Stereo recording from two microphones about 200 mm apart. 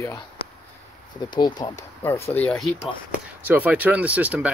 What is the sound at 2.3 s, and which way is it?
Speech, 5° left (ahead or behind).